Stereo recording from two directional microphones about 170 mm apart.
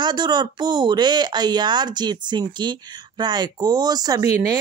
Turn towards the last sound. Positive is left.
turn(degrees=-20)  # may be behind; listen again after turning